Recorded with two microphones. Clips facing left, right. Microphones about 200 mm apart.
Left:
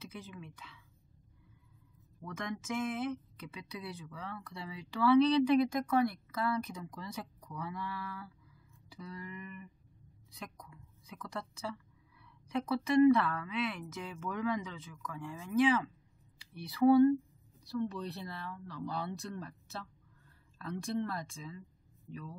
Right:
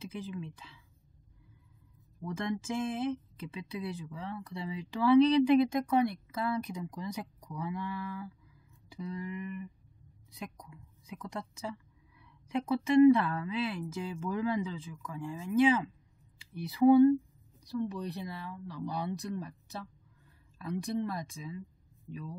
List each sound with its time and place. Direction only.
0.0 s speech: 25° right (ahead or behind)
2.3 s a woman's voice: 30° right (ahead or behind)